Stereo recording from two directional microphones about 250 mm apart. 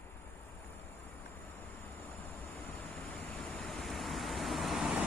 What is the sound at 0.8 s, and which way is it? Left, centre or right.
Vehicle, centre.